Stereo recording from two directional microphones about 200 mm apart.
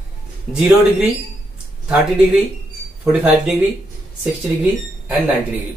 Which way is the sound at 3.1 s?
10° right (ahead or behind).